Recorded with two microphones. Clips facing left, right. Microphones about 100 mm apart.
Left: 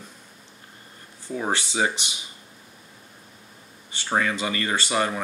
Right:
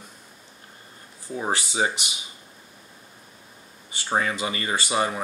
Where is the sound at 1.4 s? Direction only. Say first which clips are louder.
Even; 15° right (ahead or behind).